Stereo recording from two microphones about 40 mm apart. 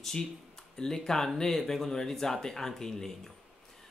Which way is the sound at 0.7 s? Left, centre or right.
Centre.